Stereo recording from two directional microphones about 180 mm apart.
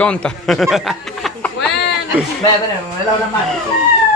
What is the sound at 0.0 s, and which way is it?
Speech, 5° left (ahead or behind).